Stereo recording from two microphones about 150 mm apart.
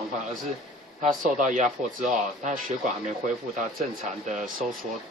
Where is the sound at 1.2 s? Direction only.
60° right (ahead or behind).